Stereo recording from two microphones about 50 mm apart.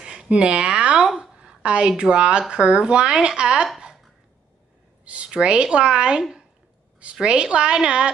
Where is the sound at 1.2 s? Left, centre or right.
Centre.